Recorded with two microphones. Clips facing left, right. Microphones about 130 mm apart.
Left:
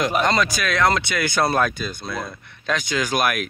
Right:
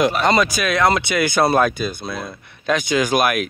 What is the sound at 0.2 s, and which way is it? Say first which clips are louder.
Speech: right 3 dB; 5° right (ahead or behind).